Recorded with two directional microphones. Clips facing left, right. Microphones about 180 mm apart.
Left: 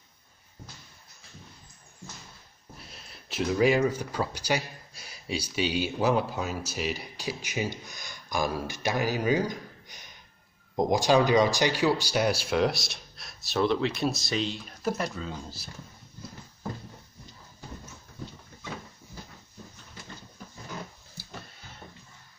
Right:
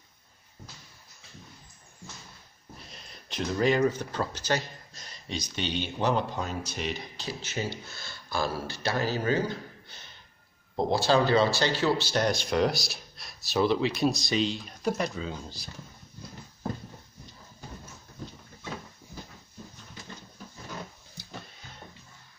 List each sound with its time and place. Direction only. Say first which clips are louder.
2.8 s speech: even; 5° left (ahead or behind)